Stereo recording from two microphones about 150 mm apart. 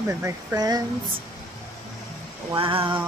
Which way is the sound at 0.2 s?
20° right (ahead or behind).